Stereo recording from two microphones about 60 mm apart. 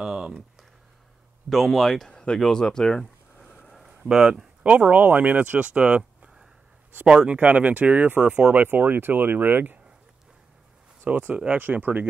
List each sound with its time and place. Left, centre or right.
0.0 s a sound: centre
1.5 s speech: centre
3.6 s a sound: centre
4.0 s speech: centre
4.6 s speech: right
11.1 s speech: right